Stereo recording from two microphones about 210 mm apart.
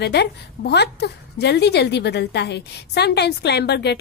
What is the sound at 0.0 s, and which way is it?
A woman's voice, 55° left (ahead or behind).